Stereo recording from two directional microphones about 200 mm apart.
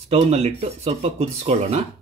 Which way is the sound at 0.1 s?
30° right (ahead or behind).